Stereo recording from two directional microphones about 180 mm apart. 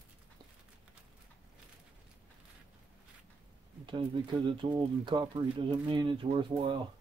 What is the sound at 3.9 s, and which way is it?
Speech, 25° right (ahead or behind).